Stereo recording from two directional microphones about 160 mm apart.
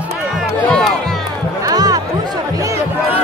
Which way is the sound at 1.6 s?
25° right (ahead or behind).